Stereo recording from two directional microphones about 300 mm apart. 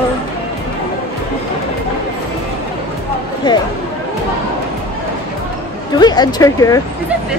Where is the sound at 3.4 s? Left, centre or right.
Centre.